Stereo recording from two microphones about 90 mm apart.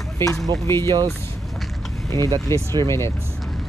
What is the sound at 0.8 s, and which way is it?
Speech, 50° right (ahead or behind).